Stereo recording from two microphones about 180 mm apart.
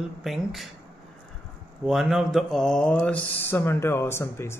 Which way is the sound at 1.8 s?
Centre (ahead or behind).